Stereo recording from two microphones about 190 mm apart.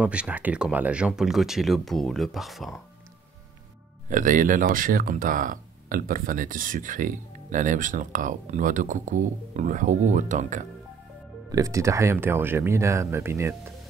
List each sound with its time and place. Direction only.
0.0 s speech: 5° right (ahead or behind)
4.1 s speech: 45° right (ahead or behind)
11.5 s speech: 15° right (ahead or behind)